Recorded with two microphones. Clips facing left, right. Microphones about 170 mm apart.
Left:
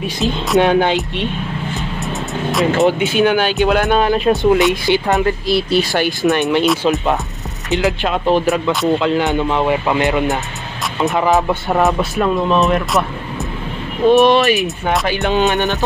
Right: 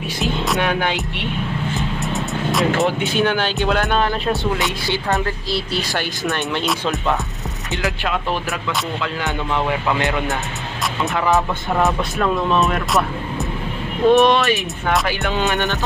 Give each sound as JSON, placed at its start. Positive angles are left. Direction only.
{"t": 0.6, "sound": "speech", "side_deg": 25}
{"t": 1.8, "sound": "music", "side_deg": 0}
{"t": 3.3, "sound": "speech", "side_deg": 10}
{"t": 6.6, "sound": "speech", "side_deg": 0}
{"t": 7.7, "sound": "speech", "side_deg": 20}
{"t": 11.8, "sound": "speech", "side_deg": 5}
{"t": 15.0, "sound": "speech", "side_deg": 20}